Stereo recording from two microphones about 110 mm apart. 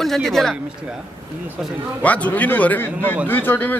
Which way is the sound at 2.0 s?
15° left (ahead or behind).